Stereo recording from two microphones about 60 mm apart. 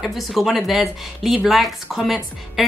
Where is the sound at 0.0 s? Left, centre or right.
Centre.